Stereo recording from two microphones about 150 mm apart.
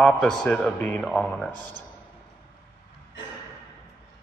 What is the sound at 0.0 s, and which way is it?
Speech, 5° left (ahead or behind).